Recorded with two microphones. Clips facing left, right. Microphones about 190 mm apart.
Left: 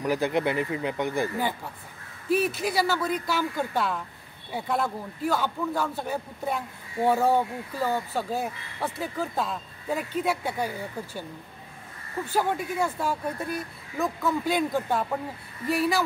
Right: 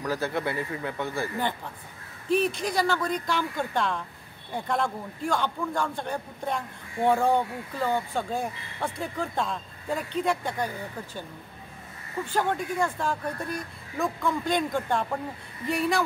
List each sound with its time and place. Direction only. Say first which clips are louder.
0.0 s speech: left 4 dB; 15° left (ahead or behind)
2.2 s a man's voice: even; 5° left (ahead or behind)
12.3 s a man's voice: left 1 dB; 5° left (ahead or behind)